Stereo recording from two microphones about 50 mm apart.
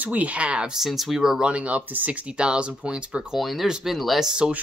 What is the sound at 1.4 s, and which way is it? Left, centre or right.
Speech, right.